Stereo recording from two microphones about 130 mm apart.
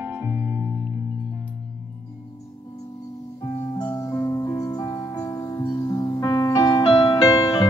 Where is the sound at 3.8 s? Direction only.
25° left (ahead or behind).